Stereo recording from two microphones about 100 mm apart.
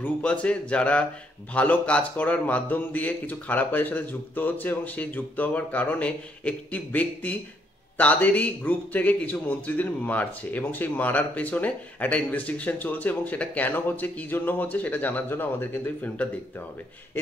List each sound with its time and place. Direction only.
0.0 s speech: 15° left (ahead or behind)